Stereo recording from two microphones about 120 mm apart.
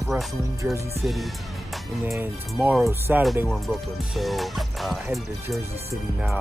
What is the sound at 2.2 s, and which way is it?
Speech, 15° right (ahead or behind).